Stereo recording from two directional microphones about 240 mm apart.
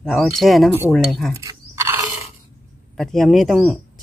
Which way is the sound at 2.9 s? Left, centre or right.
Centre.